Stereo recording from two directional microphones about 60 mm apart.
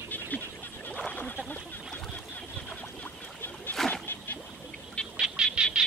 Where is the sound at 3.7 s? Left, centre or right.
Centre.